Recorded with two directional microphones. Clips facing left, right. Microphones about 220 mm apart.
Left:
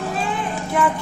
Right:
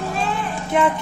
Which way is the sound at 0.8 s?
20° right (ahead or behind).